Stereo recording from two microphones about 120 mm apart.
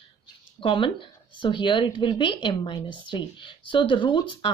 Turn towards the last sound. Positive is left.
turn(degrees=40)  # may be behind; listen again after turning